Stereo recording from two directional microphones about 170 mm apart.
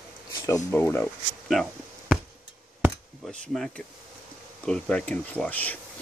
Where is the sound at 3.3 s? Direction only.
5° left (ahead or behind).